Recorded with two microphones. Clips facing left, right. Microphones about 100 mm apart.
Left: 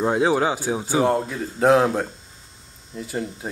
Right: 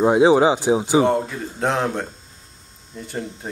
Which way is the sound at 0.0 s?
15° right (ahead or behind).